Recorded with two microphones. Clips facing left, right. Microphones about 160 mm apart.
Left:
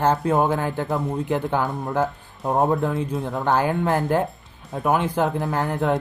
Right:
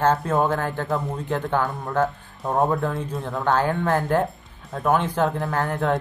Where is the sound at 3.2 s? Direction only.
20° left (ahead or behind).